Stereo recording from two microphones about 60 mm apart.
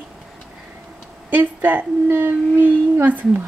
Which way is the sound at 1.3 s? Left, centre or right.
Right.